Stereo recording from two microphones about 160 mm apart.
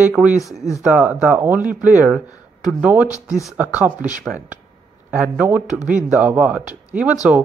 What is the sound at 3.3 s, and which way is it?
Speech, 5° right (ahead or behind).